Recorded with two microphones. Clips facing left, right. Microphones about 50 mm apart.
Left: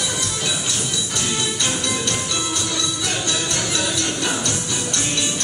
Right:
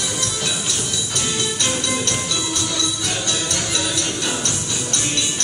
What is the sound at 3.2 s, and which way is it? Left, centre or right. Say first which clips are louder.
Music: even; left.